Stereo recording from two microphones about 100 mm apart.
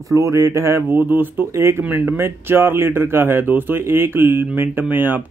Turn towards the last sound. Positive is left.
turn(degrees=-20)  # may be behind; listen again after turning